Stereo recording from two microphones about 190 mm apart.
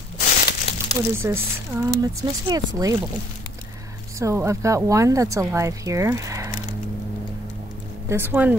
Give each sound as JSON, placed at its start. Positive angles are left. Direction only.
{"t": 0.2, "sound": "crumpling", "side_deg": 40}
{"t": 1.2, "sound": "speech", "side_deg": -15}
{"t": 4.2, "sound": "speech", "side_deg": -15}
{"t": 8.1, "sound": "speech", "side_deg": -10}